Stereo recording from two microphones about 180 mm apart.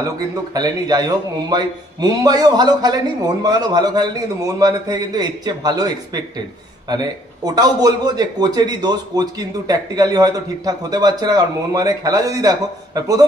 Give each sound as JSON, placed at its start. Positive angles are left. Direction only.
{"t": 0.6, "sound": "a man's voice", "side_deg": -20}